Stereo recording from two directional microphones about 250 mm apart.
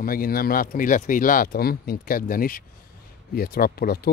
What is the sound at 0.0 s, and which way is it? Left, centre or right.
Speech, left.